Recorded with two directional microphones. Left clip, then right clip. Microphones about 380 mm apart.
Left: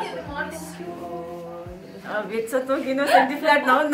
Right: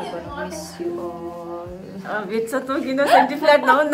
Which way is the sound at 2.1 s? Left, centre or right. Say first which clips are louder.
Right 2 dB; centre.